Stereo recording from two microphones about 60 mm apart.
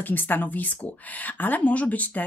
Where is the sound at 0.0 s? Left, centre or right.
Left.